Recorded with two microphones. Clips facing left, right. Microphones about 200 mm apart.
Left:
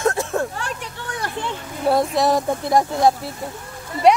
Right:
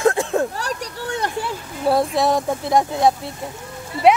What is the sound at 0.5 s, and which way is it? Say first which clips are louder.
Speech: right 3 dB; 40° right (ahead or behind).